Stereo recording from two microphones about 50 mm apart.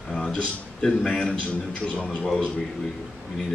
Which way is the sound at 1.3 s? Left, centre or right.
Left.